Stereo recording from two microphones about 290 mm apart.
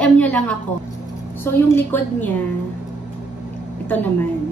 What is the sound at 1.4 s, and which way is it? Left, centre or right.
Speech, centre.